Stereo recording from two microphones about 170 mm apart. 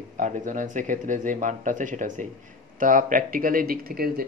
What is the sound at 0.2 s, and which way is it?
Speech, 50° right (ahead or behind).